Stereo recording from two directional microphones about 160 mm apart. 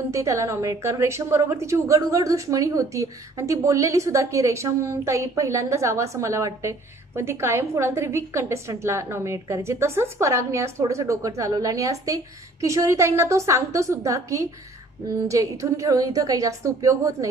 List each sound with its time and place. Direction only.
0.1 s a woman's voice: 20° right (ahead or behind)